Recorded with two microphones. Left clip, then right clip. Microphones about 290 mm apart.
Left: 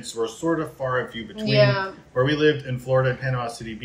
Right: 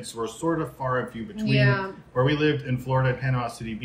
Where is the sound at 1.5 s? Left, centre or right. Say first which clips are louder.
Left 5 dB; centre.